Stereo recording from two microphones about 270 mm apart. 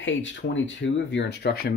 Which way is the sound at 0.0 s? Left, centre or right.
Left.